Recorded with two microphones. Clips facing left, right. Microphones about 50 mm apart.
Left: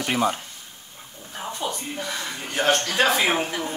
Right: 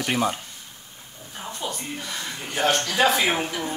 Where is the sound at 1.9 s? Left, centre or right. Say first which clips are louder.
Left 2 dB; left.